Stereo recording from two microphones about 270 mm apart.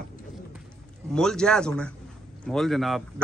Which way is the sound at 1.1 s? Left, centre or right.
Centre.